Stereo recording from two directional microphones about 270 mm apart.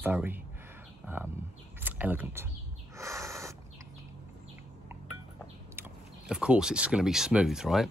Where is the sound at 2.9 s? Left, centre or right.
Centre.